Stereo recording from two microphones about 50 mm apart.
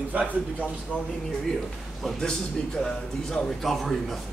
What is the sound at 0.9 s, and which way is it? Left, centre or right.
Speech, left.